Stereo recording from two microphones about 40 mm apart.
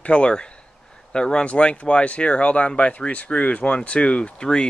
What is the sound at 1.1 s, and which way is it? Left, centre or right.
Speech, left.